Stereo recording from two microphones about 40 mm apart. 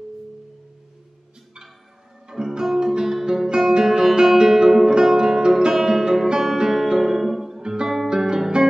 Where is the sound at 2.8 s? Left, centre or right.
Centre.